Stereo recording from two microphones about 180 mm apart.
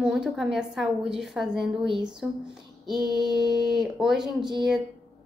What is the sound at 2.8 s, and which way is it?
Child singing, 25° right (ahead or behind).